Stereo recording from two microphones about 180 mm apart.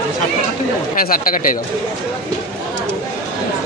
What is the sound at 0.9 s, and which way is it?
Speech, 50° left (ahead or behind).